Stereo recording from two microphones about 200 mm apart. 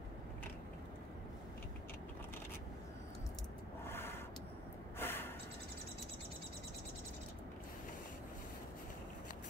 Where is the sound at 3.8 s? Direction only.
10° left (ahead or behind).